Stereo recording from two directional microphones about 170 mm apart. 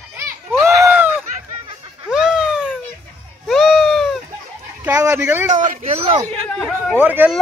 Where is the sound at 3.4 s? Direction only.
Centre (ahead or behind).